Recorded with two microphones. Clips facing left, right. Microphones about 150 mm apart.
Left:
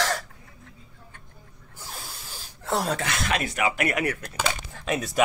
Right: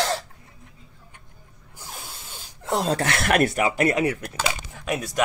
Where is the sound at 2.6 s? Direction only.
20° right (ahead or behind).